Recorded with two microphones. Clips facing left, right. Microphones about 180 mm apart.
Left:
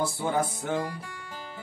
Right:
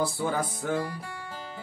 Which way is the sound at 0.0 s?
25° left (ahead or behind).